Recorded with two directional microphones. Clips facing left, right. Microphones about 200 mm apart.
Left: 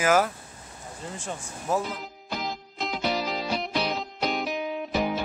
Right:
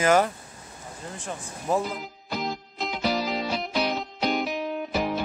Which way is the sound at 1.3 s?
Centre (ahead or behind).